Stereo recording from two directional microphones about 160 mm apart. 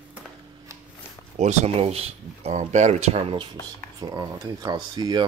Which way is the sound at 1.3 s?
45° right (ahead or behind).